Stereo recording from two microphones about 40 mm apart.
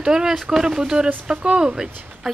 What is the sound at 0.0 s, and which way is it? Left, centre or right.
Speech, centre.